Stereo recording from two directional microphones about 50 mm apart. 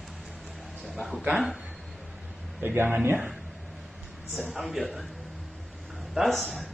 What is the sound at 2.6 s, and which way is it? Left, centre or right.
Speech, right.